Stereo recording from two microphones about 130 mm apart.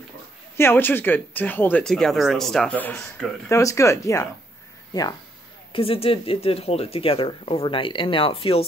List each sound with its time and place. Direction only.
0.6 s speech: 15° left (ahead or behind)
5.7 s speech: 45° left (ahead or behind)